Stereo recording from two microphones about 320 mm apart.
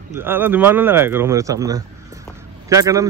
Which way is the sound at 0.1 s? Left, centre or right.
Centre.